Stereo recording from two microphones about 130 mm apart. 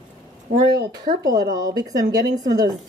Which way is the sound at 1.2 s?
30° right (ahead or behind).